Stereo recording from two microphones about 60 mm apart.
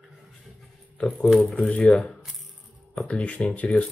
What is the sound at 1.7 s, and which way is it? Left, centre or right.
Speech, left.